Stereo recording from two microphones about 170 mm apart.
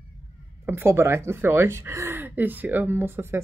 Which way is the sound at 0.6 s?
15° right (ahead or behind).